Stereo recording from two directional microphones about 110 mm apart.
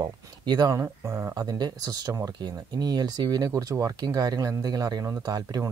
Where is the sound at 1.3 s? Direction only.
35° right (ahead or behind).